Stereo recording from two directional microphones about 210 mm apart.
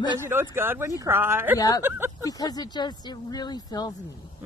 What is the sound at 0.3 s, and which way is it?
A woman's voice, 10° right (ahead or behind).